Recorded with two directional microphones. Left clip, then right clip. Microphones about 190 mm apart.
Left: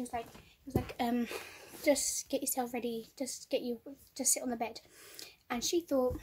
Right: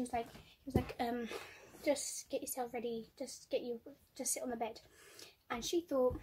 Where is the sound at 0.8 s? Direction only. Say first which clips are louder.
Left 3 dB; 15° left (ahead or behind).